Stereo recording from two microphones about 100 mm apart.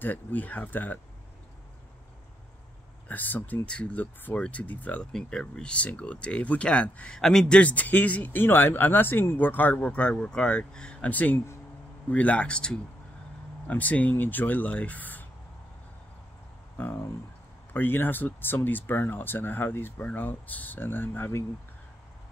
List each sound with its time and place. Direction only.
0.0 s speech: 15° left (ahead or behind)
3.1 s speech: 15° left (ahead or behind)
16.7 s speech: 25° left (ahead or behind)